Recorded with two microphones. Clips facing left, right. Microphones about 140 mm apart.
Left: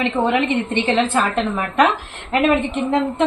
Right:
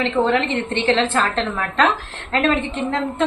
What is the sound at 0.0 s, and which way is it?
A woman's voice, 15° left (ahead or behind).